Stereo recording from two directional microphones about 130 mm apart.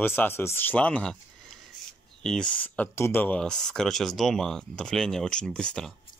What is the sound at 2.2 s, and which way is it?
Speech, 5° left (ahead or behind).